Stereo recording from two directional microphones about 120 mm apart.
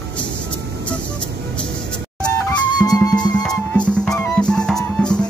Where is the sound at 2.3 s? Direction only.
15° left (ahead or behind).